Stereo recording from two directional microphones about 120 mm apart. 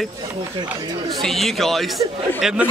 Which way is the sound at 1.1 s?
Centre (ahead or behind).